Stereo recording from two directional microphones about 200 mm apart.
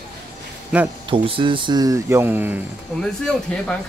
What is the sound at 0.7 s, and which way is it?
Speech, 5° right (ahead or behind).